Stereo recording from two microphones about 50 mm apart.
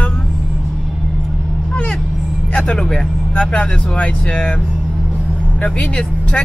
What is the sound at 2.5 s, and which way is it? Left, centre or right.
Speech, centre.